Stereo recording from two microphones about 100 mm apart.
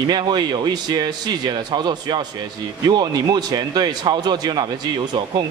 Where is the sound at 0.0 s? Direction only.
45° right (ahead or behind).